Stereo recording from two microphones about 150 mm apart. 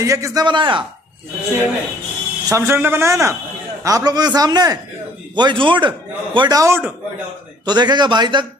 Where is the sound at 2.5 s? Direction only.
15° right (ahead or behind).